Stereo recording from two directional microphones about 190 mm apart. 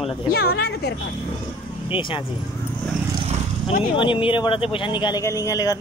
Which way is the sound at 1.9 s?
25° left (ahead or behind).